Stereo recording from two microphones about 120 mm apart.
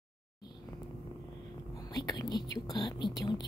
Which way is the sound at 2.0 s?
35° left (ahead or behind).